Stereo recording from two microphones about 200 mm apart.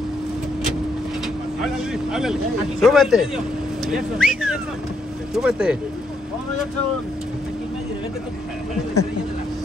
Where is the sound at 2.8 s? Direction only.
Centre (ahead or behind).